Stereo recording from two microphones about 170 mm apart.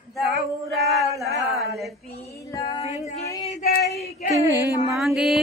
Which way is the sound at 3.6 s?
65° left (ahead or behind).